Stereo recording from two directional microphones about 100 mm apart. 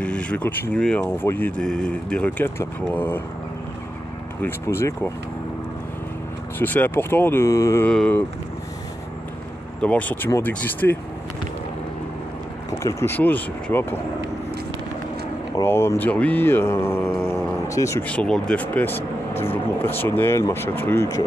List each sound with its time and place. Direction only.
0.0 s speech: 10° left (ahead or behind)
1.6 s speech: 10° left (ahead or behind)
4.4 s speech: 25° left (ahead or behind)
6.6 s speech: 20° left (ahead or behind)
7.8 s speech: 10° left (ahead or behind)
9.8 s speech: 15° left (ahead or behind)
12.7 s speech: 30° left (ahead or behind)
13.1 s speech: 15° left (ahead or behind)
15.6 s speech: 25° left (ahead or behind)
18.0 s speech: 10° left (ahead or behind); by 21.2 s 25° left (ahead or behind)